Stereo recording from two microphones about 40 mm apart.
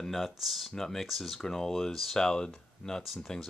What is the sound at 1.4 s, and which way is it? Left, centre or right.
Speech, centre.